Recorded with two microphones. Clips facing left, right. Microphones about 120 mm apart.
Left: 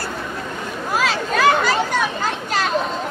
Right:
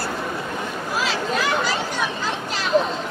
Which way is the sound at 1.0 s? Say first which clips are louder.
Left 6 dB; 55° left (ahead or behind).